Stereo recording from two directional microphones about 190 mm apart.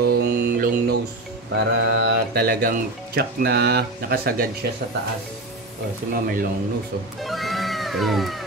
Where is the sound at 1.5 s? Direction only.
70° right (ahead or behind); by 4.5 s 50° right (ahead or behind).